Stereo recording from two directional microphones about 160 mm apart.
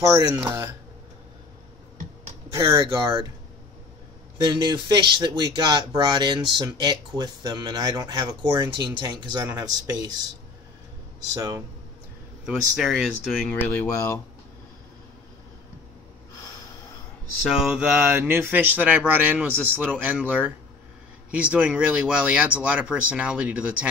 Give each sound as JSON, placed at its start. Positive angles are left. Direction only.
{"t": 0.4, "sound": "speech", "side_deg": -25}
{"t": 2.5, "sound": "speech", "side_deg": -25}
{"t": 4.4, "sound": "speech", "side_deg": -25}
{"t": 11.3, "sound": "speech", "side_deg": -25}
{"t": 12.4, "sound": "speech", "side_deg": -5}
{"t": 13.5, "sound": "speech", "side_deg": 10}
{"t": 17.5, "sound": "speech", "side_deg": 0}